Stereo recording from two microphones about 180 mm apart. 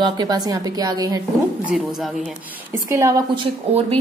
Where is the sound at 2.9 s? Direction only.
15° right (ahead or behind).